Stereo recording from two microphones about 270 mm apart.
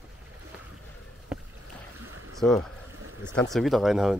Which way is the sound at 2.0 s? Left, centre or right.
Right.